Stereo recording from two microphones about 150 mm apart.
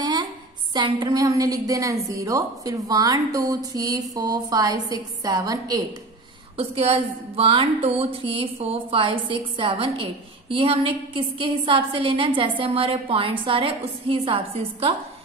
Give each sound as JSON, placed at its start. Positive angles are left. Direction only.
{"t": 0.0, "sound": "a sound", "side_deg": -30}
{"t": 0.7, "sound": "a woman's voice", "side_deg": -30}
{"t": 6.5, "sound": "a woman's voice", "side_deg": -40}